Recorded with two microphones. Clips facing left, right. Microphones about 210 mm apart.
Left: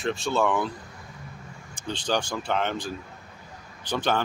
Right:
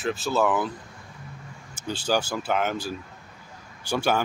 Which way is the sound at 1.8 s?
5° right (ahead or behind).